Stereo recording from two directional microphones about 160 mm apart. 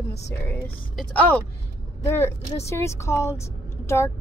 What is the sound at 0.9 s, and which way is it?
Speech, 10° left (ahead or behind).